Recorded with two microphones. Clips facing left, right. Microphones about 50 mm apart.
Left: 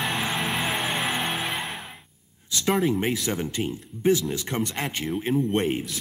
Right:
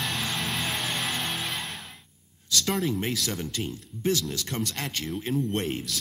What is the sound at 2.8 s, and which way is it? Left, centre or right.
Speech, left.